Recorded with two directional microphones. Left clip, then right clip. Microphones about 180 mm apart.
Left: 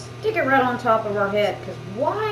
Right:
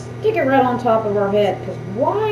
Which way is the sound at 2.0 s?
10° left (ahead or behind).